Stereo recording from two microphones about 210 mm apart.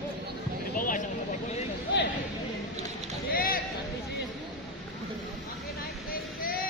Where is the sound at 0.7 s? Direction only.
40° left (ahead or behind).